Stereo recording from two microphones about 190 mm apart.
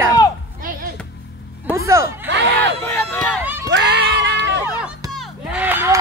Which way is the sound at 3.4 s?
10° right (ahead or behind).